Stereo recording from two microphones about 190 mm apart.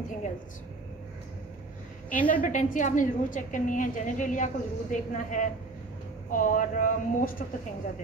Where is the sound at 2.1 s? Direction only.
45° left (ahead or behind).